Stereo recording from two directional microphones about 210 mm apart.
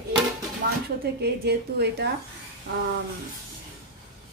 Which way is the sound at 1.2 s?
50° right (ahead or behind).